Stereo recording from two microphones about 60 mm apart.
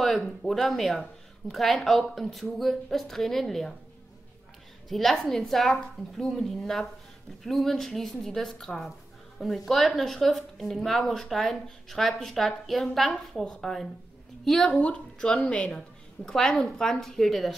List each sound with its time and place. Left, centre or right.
0.0 s a woman's voice: centre
4.8 s a woman's voice: centre
14.8 s speech: centre
16.3 s a woman's voice: centre